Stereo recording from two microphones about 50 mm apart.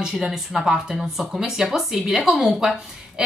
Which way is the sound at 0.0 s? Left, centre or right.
Centre.